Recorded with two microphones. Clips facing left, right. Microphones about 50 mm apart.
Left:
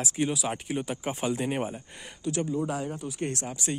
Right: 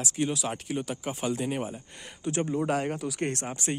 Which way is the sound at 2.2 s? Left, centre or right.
Right.